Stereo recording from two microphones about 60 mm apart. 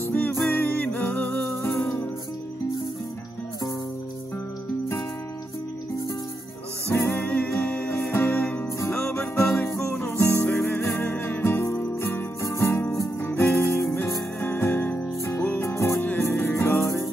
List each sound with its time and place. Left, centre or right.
0.0 s music: left
1.5 s music: left
6.9 s music: left
7.2 s music: left
8.1 s music: left
10.7 s music: left
12.4 s music: left
13.4 s music: left
15.6 s music: left
16.0 s music: left